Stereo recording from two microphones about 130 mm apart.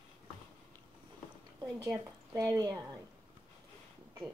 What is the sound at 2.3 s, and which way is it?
Speech, 25° right (ahead or behind).